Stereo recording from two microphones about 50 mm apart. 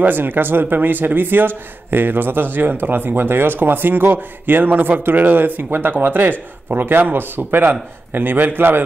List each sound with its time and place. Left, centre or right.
0.0 s a man's voice: right